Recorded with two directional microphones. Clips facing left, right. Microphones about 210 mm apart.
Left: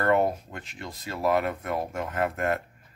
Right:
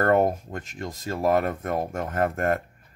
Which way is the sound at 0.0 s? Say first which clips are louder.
Right 3 dB; 45° right (ahead or behind).